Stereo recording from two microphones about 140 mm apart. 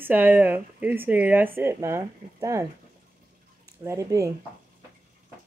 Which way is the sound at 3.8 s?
20° right (ahead or behind).